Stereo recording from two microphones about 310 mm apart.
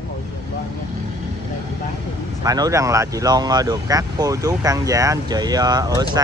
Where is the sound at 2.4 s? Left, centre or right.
Centre.